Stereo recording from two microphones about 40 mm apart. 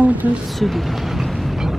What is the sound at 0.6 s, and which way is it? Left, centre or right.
Speech, centre.